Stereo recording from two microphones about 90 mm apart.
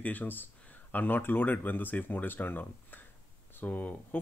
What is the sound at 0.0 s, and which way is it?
Speech, 20° left (ahead or behind).